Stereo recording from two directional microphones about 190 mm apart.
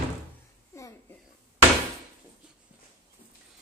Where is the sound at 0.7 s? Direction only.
15° left (ahead or behind).